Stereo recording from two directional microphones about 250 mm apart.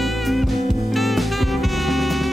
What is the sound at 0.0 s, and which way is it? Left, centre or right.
Music, centre.